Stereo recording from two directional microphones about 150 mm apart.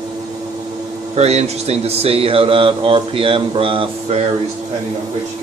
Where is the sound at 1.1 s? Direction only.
45° right (ahead or behind).